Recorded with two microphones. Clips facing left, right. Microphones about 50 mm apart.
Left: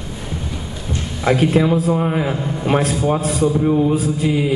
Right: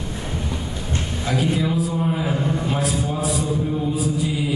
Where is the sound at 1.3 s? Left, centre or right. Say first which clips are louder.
Left 7 dB; left.